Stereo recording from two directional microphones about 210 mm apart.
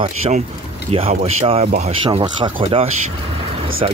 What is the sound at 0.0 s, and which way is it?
Speech, 30° right (ahead or behind).